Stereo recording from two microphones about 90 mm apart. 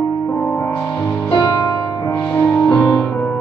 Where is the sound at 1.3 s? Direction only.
45° left (ahead or behind).